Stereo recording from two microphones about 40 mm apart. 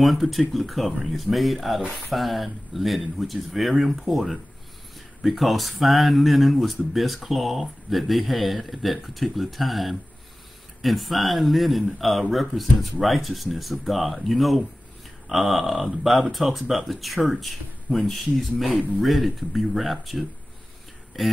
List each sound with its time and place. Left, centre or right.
0.0 s speech: centre